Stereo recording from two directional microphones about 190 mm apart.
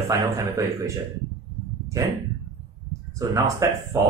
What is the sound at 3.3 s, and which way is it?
Speech, 15° right (ahead or behind).